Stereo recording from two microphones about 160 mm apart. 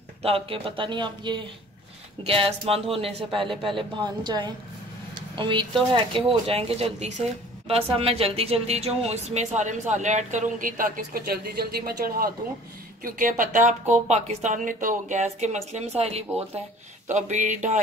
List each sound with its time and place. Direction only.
0.2 s a woman's voice: 35° right (ahead or behind); by 11.9 s 75° right (ahead or behind)
13.0 s speech: 55° right (ahead or behind)